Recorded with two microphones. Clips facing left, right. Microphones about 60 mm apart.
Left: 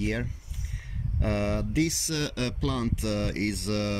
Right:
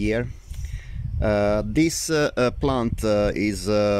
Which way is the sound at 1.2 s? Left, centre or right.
Right.